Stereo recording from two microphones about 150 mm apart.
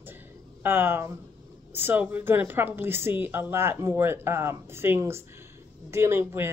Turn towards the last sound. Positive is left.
turn(degrees=-15)  # may be behind; listen again after turning